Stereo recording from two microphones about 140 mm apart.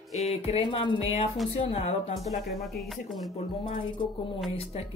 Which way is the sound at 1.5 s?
50° left (ahead or behind).